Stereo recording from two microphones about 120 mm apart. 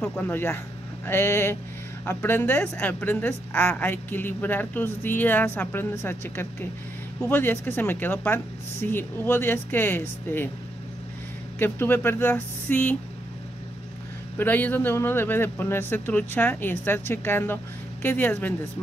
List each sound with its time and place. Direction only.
0.0 s a woman's voice: 15° left (ahead or behind)
11.6 s a woman's voice: 15° left (ahead or behind)
14.4 s a woman's voice: 15° left (ahead or behind)